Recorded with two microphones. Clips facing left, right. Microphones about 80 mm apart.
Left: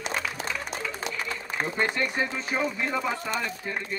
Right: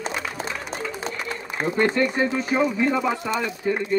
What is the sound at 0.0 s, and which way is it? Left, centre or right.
Applause, right.